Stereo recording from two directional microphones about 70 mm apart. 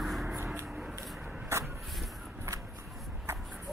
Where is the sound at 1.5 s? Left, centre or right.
Right.